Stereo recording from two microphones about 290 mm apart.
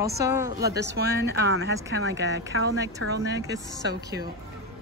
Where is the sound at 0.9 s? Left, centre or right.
Right.